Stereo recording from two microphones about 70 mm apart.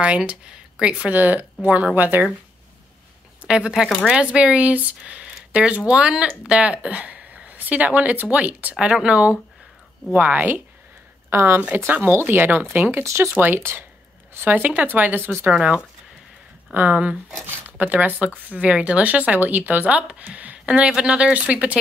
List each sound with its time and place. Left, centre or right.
0.0 s speech: centre
3.4 s a woman's voice: centre
11.2 s speech: right
11.7 s speech: right
13.0 s speech: right
13.3 s speech: right
15.5 s speech: centre